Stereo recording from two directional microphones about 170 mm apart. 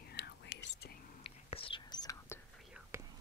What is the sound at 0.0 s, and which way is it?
Whispering, 70° left (ahead or behind).